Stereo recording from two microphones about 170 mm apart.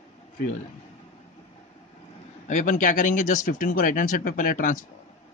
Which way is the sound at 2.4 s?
50° left (ahead or behind).